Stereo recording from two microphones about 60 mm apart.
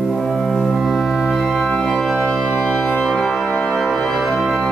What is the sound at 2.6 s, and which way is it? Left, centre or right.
Music, centre.